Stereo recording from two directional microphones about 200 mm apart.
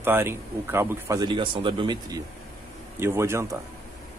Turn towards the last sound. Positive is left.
turn(degrees=-15)  # may be behind; listen again after turning